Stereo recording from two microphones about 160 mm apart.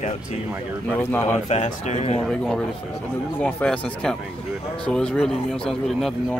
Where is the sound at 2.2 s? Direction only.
5° left (ahead or behind).